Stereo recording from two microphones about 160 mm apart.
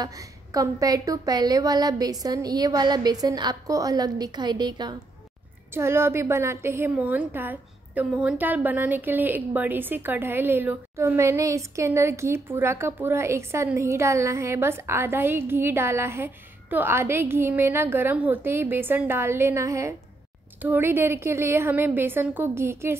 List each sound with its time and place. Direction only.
0.0 s a woman's voice: 20° right (ahead or behind)
5.8 s a woman's voice: 15° right (ahead or behind)